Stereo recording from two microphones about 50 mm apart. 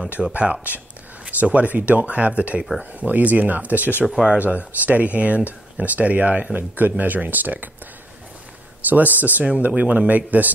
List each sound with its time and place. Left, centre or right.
0.3 s speech: right
4.0 s speech: centre
4.3 s speech: right
8.8 s speech: right